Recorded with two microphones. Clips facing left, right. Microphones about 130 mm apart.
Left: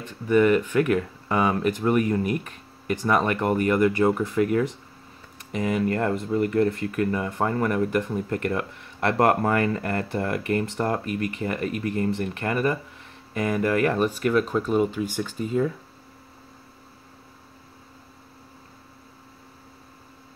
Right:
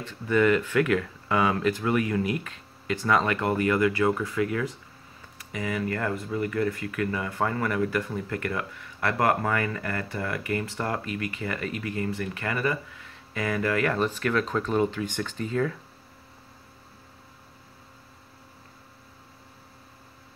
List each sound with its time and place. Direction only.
0.0 s speech: 20° left (ahead or behind)
1.9 s speech: 35° left (ahead or behind)
3.0 s speech: 15° left (ahead or behind)
4.4 s speech: 40° left (ahead or behind)
5.6 s speech: 30° left (ahead or behind)
9.2 s speech: 40° left (ahead or behind); by 15.7 s 10° left (ahead or behind)